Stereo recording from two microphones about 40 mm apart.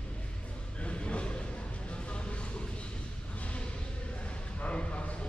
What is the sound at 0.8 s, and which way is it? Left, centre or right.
Vehicle, left.